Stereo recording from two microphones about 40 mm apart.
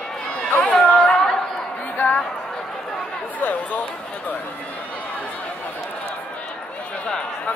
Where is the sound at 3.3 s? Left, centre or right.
Left.